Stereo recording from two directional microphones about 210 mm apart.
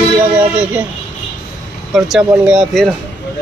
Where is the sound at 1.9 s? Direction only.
Centre (ahead or behind).